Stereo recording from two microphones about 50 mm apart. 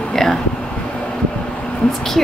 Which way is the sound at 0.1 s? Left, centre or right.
Centre.